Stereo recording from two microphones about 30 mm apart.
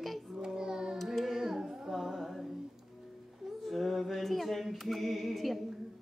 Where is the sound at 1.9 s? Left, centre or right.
Centre.